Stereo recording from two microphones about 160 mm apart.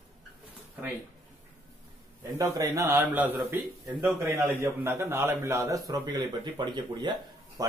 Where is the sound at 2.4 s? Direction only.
20° right (ahead or behind).